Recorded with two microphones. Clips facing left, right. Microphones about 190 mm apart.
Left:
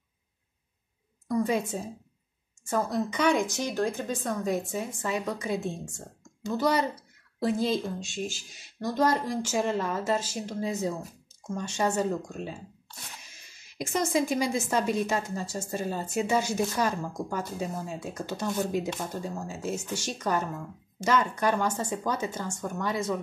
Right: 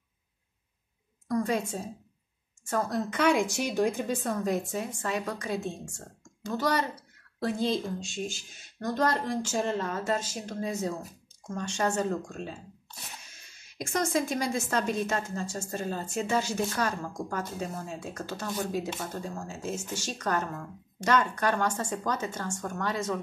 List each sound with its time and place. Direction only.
1.3 s a woman's voice: 5° left (ahead or behind)
3.1 s speech: 5° right (ahead or behind)
13.7 s speech: 10° left (ahead or behind)
18.3 s speech: 20° left (ahead or behind)